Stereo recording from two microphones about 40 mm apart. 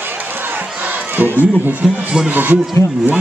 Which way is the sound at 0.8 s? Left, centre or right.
Right.